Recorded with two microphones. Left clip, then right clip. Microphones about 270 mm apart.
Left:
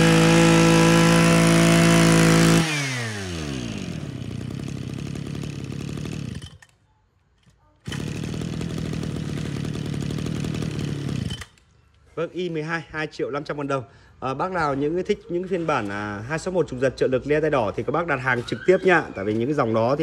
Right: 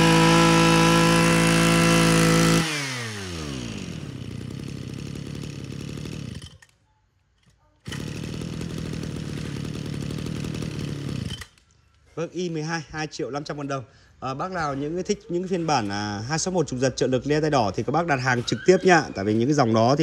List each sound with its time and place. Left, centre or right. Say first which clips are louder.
0.0 s vehicle: even; centre
7.8 s motorcycle: left 2 dB; centre
12.2 s a man's voice: left 2 dB; centre